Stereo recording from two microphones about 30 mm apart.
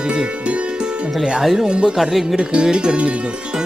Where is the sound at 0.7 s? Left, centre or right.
Right.